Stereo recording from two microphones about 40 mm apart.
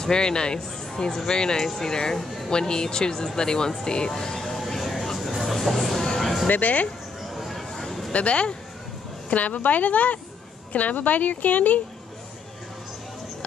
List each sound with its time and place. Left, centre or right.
0.0 s speech: centre
4.1 s vehicle: centre
5.4 s music: centre
6.1 s a sound: centre
6.5 s a woman's voice: left
7.2 s a sound: centre
8.1 s a woman's voice: left
9.3 s a woman's voice: left